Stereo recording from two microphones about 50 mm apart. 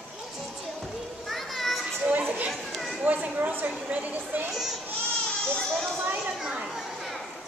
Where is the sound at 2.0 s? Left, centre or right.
Right.